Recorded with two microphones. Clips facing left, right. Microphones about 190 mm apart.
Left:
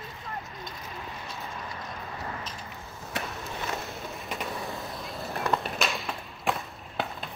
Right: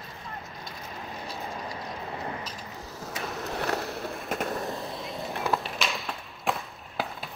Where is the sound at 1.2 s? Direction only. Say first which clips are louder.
Right 3 dB; 35° right (ahead or behind).